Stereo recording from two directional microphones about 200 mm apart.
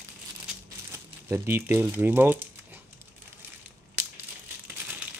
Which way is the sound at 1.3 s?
10° right (ahead or behind).